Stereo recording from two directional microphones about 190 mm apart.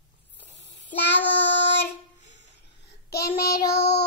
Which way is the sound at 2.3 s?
65° left (ahead or behind).